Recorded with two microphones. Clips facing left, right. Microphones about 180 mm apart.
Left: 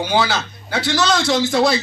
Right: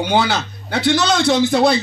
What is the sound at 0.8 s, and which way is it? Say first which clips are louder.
Speech: right 3 dB; 55° right (ahead or behind).